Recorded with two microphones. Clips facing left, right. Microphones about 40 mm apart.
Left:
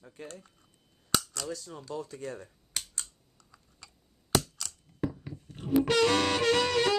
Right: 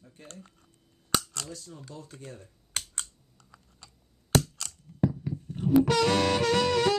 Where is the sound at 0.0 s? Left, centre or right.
Left.